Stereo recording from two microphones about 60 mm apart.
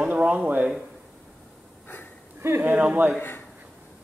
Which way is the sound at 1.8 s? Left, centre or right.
Left.